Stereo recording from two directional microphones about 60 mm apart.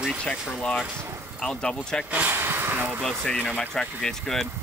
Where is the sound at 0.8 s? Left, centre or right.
Right.